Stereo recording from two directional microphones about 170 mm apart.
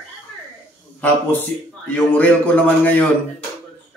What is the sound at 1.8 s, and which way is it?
A man's voice, 10° left (ahead or behind).